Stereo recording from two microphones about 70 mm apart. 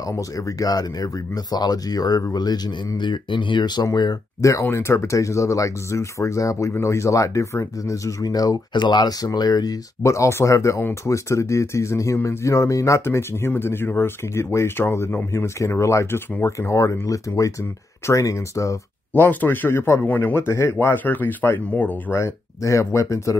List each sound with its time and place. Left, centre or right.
0.0 s speech: left
3.0 s speech: left
3.9 s speech: left
4.4 s speech: left
10.0 s speech: left
19.1 s speech: left
20.8 s speech: left
22.1 s speech: left